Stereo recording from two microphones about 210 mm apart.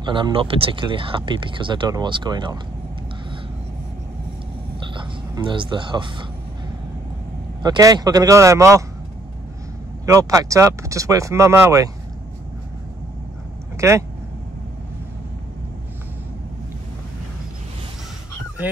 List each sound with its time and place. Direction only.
0.0 s speech: 25° right (ahead or behind)
4.8 s a sound: 25° right (ahead or behind)
7.6 s speech: 20° right (ahead or behind)
10.0 s speech: 15° right (ahead or behind)
13.7 s speech: 15° right (ahead or behind)